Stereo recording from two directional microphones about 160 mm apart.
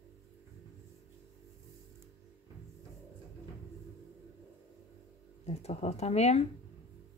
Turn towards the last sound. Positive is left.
turn(degrees=45)  # may be behind; listen again after turning